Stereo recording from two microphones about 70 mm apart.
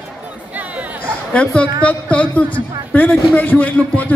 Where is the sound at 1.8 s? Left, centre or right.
Centre.